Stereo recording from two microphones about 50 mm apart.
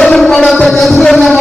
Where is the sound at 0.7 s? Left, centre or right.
Centre.